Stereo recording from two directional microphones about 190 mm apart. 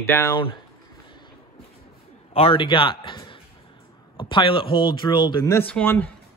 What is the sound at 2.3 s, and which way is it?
Speech, 30° left (ahead or behind).